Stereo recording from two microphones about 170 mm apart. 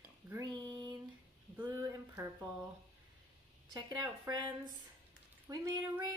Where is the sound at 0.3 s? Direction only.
25° right (ahead or behind).